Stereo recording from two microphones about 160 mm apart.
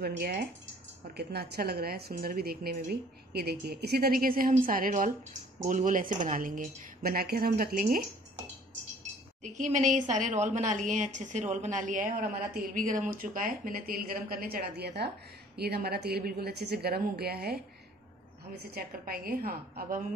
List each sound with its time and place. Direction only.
0.0 s a woman's voice: 75° right (ahead or behind)
1.1 s a woman's voice: 90° right; by 8.1 s 60° right (ahead or behind)
9.4 s a woman's voice: 50° right (ahead or behind); by 17.6 s 75° right (ahead or behind)
18.8 s speech: 65° right (ahead or behind)